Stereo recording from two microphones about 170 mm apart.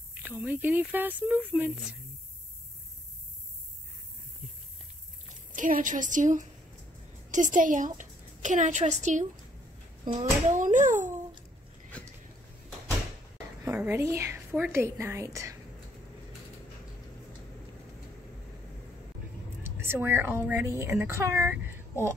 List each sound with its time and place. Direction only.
0.1 s speech: 10° right (ahead or behind)
5.6 s a woman's voice: 50° right (ahead or behind)
13.7 s speech: 15° right (ahead or behind)
19.6 s a woman's voice: 15° right (ahead or behind)